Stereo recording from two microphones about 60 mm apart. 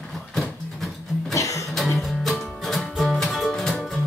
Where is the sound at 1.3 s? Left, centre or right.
Left.